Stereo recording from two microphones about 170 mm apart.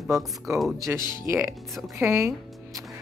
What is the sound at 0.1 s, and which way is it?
Speech, 20° right (ahead or behind).